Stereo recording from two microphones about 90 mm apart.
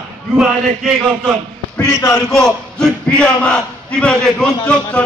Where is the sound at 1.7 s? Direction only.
30° left (ahead or behind).